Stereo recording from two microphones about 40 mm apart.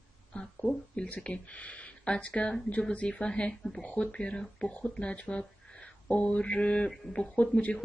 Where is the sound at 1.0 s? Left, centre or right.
Left.